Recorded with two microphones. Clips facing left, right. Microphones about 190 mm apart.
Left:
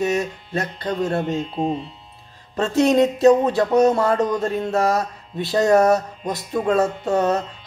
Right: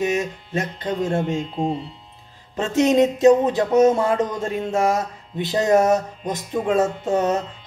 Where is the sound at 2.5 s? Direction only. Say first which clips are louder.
Left 1 dB; 15° right (ahead or behind).